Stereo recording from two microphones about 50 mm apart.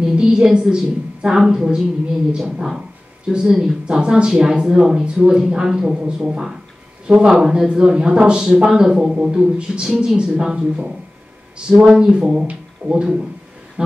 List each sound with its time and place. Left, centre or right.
0.0 s speech: centre
11.8 s speech: centre
13.8 s music: centre